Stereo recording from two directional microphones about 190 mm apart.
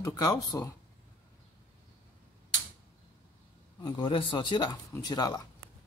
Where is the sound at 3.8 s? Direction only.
25° left (ahead or behind).